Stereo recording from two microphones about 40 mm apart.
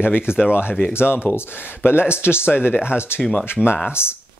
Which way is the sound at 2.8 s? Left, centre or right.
Left.